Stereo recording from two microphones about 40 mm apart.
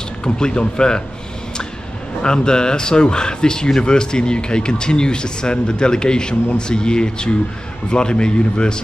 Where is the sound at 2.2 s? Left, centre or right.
Centre.